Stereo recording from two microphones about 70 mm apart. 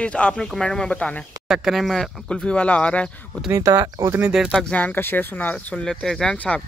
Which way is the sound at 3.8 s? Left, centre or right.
Right.